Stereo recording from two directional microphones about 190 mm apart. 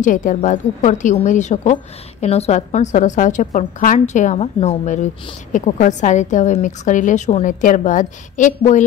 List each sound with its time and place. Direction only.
0.0 s a woman's voice: 40° left (ahead or behind)